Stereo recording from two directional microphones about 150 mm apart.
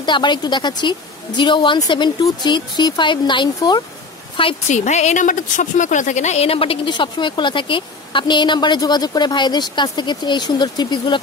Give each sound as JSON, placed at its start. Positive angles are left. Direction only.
{"t": 0.0, "sound": "a woman's voice", "side_deg": 30}
{"t": 4.6, "sound": "a woman's voice", "side_deg": 50}